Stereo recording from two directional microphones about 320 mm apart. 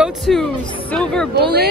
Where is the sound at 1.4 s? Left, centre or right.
Right.